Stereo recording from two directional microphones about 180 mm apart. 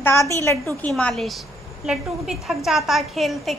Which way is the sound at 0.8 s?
5° left (ahead or behind).